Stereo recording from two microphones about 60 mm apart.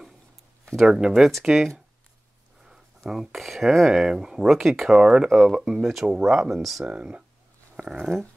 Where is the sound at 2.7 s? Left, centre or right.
Centre.